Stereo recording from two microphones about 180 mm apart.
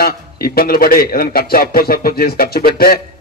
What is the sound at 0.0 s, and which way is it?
A man's voice, 55° left (ahead or behind).